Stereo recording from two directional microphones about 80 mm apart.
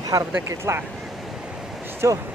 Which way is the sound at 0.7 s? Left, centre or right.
Right.